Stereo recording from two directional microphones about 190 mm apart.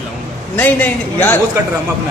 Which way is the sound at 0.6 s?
10° left (ahead or behind).